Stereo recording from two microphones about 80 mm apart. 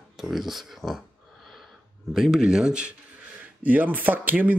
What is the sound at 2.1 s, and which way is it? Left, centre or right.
Speech, centre.